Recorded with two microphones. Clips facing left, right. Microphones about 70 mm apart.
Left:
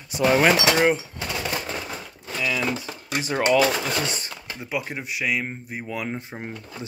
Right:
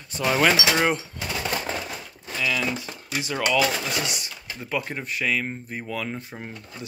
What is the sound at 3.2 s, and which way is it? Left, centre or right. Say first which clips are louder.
Speech: left 3 dB; left.